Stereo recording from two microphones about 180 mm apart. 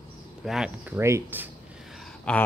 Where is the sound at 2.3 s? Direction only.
5° left (ahead or behind).